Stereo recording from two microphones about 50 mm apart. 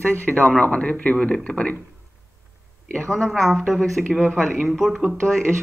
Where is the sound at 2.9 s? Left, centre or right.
Centre.